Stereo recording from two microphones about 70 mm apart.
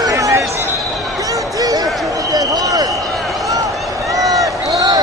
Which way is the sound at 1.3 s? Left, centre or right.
Right.